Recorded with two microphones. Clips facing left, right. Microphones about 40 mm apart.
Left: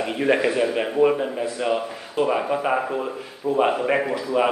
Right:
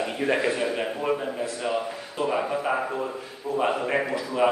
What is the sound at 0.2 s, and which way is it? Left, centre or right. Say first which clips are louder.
Speech: left 5 dB; centre.